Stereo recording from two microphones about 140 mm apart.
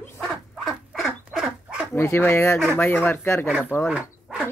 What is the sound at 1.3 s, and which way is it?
Pig, 5° right (ahead or behind).